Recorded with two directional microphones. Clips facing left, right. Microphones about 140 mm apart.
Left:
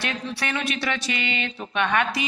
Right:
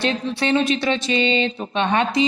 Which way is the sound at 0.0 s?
25° right (ahead or behind).